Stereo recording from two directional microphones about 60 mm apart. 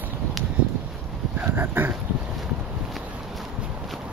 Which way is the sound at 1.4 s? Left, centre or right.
Right.